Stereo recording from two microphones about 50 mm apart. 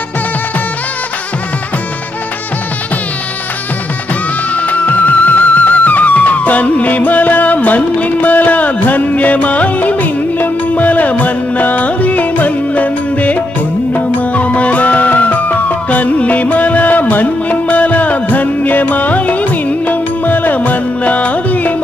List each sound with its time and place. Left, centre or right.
4.6 s music: left